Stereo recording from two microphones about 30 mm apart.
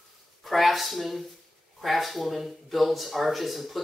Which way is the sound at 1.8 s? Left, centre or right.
Centre.